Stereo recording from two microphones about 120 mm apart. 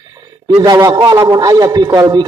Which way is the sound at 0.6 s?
30° right (ahead or behind).